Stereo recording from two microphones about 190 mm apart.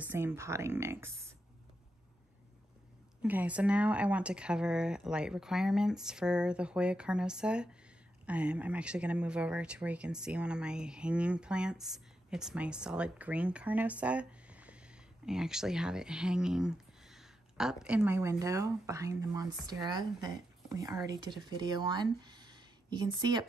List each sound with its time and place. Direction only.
0.0 s speech: 10° right (ahead or behind)
3.2 s speech: 10° right (ahead or behind)